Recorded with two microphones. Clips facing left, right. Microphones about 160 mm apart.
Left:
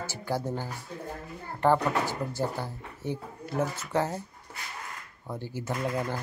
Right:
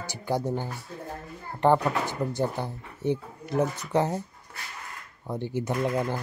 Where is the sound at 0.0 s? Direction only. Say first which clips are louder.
Right 3 dB; 15° right (ahead or behind).